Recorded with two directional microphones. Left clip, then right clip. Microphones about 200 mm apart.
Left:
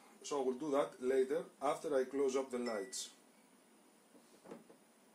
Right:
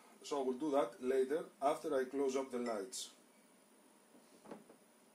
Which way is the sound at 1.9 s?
30° left (ahead or behind).